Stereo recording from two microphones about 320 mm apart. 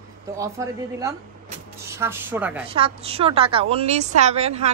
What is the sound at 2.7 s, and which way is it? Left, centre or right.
A woman's voice, centre.